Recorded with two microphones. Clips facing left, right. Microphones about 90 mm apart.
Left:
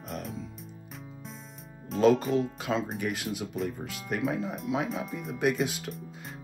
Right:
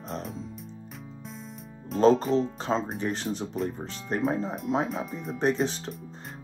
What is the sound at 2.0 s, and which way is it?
Speech, 35° right (ahead or behind).